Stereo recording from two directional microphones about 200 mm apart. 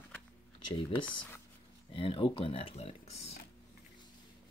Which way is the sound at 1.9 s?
25° left (ahead or behind).